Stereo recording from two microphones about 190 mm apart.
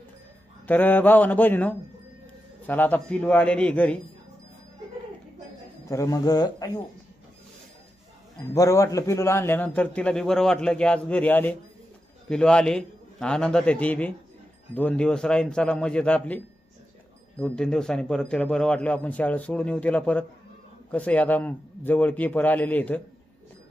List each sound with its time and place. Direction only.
0.7 s a man's voice: 10° left (ahead or behind)
5.9 s speech: 15° left (ahead or behind)
8.5 s a man's voice: 15° left (ahead or behind)